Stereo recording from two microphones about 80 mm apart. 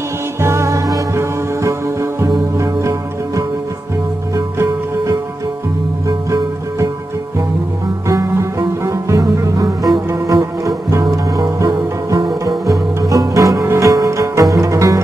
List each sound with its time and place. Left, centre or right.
0.4 s music: right
6.0 s music: right
8.1 s music: right